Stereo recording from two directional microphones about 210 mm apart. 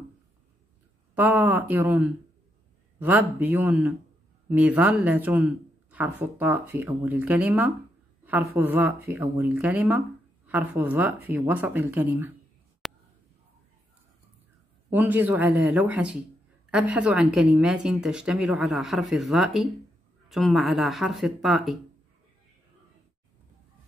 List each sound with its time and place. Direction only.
1.1 s speech: 10° right (ahead or behind)
12.8 s a sound: centre (ahead or behind)
14.9 s speech: 10° right (ahead or behind)